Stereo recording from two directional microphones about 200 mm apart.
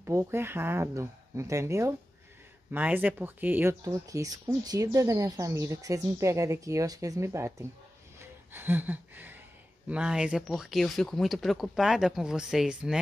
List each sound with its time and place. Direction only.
0.0 s speech: 10° right (ahead or behind)
8.2 s gasp: 10° right (ahead or behind)
9.8 s speech: 5° right (ahead or behind)